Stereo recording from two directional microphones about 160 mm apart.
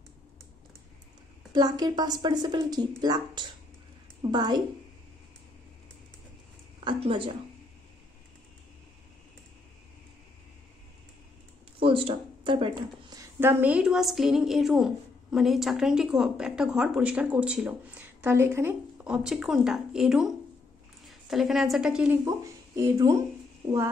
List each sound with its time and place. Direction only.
1.5 s a woman's voice: 25° right (ahead or behind)
6.8 s a woman's voice: 30° right (ahead or behind)
11.8 s a woman's voice: 35° right (ahead or behind); by 18.0 s 5° right (ahead or behind)
18.2 s a woman's voice: 15° right (ahead or behind)
22.2 s speech: 20° right (ahead or behind)